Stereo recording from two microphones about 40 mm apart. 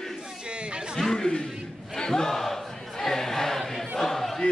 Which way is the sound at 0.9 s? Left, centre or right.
Centre.